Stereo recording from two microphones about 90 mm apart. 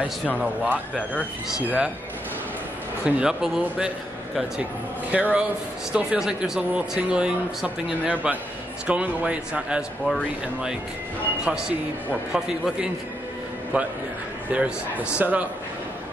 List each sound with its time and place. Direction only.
0.4 s speech: 10° right (ahead or behind)
3.1 s speech: 10° right (ahead or behind)
5.1 s speech: 15° right (ahead or behind)
11.4 s speech: 10° right (ahead or behind)